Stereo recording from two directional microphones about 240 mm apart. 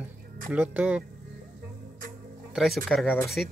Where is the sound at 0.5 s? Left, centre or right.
Centre.